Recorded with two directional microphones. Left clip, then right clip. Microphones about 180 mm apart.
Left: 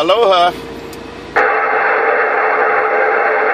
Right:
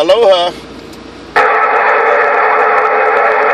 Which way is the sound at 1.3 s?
45° right (ahead or behind).